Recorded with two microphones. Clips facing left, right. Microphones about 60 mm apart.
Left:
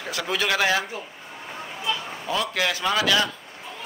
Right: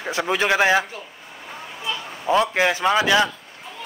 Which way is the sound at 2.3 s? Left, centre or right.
Right.